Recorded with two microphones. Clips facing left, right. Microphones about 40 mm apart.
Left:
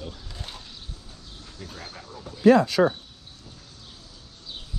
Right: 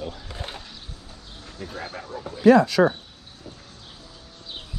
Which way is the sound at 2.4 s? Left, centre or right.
Right.